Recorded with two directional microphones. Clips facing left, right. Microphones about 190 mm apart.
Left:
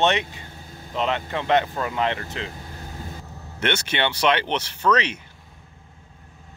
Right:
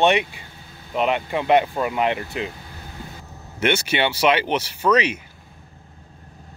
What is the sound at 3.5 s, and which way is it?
Speech, 10° right (ahead or behind).